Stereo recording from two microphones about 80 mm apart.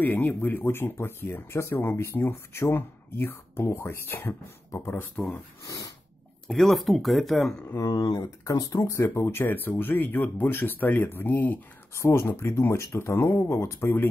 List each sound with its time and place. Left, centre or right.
0.0 s speech: left
5.7 s snort: left
6.4 s speech: centre
7.7 s speech: left
11.9 s speech: left